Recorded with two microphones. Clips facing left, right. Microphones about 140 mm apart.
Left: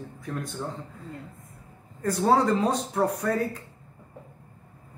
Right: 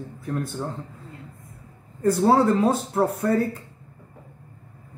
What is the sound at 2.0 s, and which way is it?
A man's voice, 10° right (ahead or behind).